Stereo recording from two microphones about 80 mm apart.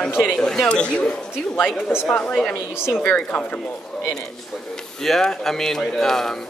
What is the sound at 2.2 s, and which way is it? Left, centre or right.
Speech, centre.